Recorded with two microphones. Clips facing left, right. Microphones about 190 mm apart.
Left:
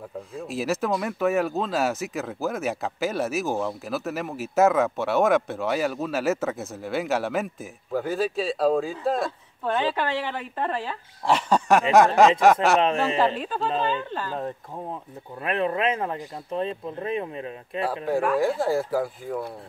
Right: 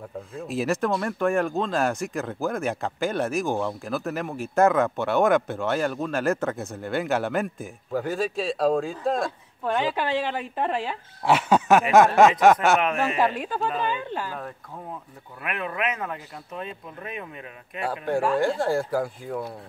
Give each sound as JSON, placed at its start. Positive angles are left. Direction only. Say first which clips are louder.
{"t": 0.3, "sound": "speech", "louder": "right 1 dB", "side_deg": 0}
{"t": 9.8, "sound": "speech", "louder": "right 1 dB", "side_deg": -15}
{"t": 11.2, "sound": "speech", "louder": "right 1 dB", "side_deg": -5}
{"t": 13.2, "sound": "speech", "louder": "even", "side_deg": -10}
{"t": 15.4, "sound": "speech", "louder": "left 5 dB", "side_deg": 30}
{"t": 18.1, "sound": "speech", "louder": "even", "side_deg": 0}